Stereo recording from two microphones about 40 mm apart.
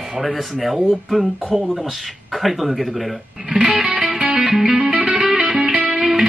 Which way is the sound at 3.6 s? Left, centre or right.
Centre.